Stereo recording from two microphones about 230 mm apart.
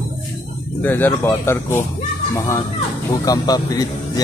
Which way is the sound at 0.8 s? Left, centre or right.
Centre.